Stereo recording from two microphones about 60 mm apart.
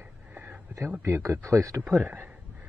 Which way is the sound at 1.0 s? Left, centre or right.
Right.